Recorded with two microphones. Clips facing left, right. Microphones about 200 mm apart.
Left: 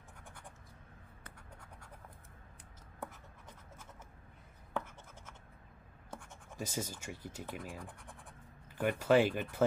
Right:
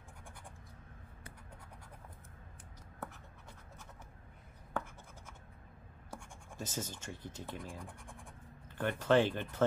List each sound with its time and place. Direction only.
6.5 s speech: 10° left (ahead or behind)